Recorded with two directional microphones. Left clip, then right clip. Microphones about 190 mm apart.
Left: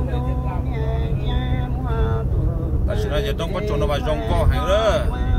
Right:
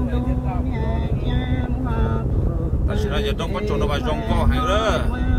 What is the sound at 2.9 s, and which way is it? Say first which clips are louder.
Speech: left 1 dB; 15° left (ahead or behind).